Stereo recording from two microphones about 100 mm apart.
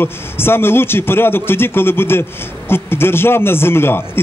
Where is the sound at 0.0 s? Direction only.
25° left (ahead or behind).